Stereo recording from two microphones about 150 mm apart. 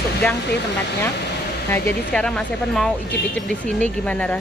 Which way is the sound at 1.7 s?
10° left (ahead or behind).